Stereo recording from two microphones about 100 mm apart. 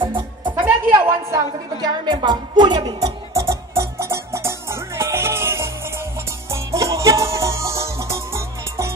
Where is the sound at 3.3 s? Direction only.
30° right (ahead or behind).